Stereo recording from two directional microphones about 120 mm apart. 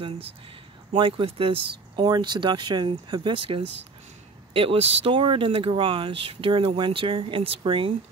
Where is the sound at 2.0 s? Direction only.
35° right (ahead or behind); by 5.1 s 55° right (ahead or behind).